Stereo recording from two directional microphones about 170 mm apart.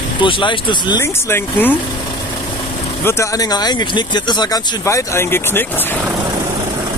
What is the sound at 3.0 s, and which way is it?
Speech, 15° left (ahead or behind).